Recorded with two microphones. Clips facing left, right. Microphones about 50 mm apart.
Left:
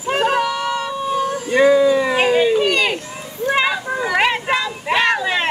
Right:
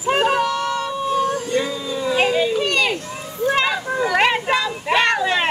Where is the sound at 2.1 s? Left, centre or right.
Left.